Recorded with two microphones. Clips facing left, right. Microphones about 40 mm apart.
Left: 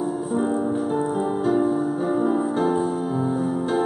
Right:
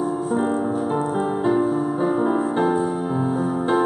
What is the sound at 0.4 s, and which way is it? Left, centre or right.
Music, right.